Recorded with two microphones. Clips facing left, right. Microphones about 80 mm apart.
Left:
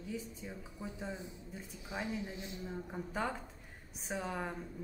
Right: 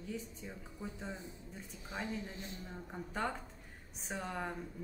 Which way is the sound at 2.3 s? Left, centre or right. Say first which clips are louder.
Left 2 dB; right.